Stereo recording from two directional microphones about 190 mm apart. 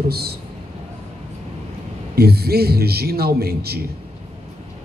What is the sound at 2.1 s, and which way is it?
A man's voice, 55° right (ahead or behind).